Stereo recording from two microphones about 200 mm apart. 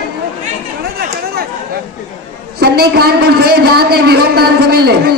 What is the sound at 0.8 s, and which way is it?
Chatter, 50° right (ahead or behind).